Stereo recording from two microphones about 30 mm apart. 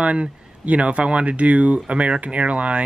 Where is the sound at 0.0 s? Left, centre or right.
Right.